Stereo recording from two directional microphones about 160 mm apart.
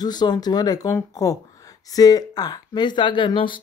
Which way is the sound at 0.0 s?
25° left (ahead or behind).